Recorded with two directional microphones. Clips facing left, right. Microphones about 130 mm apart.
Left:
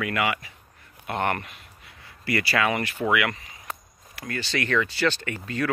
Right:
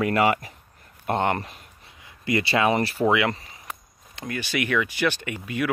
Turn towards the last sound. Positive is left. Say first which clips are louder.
# right 1 dB
turn(degrees=-15)  # may be behind; listen again after turning